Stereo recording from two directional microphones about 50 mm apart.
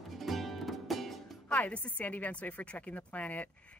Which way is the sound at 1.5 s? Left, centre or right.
Left.